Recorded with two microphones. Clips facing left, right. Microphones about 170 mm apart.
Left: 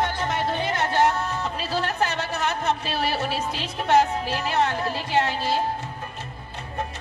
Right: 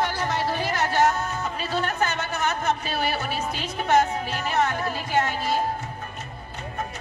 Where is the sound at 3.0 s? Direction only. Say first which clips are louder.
Left 1 dB; 30° left (ahead or behind).